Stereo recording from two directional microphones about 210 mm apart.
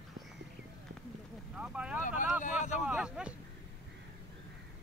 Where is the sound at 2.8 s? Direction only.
5° right (ahead or behind).